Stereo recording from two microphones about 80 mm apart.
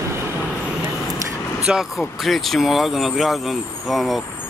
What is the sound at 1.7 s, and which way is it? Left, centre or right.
Speech, centre.